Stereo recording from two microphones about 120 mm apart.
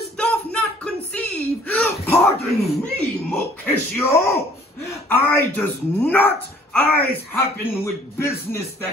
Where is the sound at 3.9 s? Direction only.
25° left (ahead or behind).